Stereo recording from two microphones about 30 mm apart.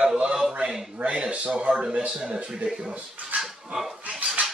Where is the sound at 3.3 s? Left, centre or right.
Right.